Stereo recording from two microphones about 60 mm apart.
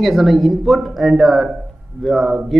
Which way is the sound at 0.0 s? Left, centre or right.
Centre.